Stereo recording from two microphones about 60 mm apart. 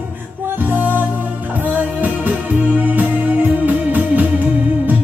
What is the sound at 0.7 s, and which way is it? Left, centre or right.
Music, right.